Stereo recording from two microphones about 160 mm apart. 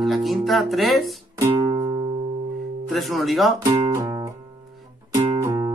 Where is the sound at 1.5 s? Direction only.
25° right (ahead or behind).